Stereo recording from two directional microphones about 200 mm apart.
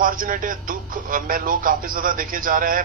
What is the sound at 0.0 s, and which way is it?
Speech, 45° right (ahead or behind).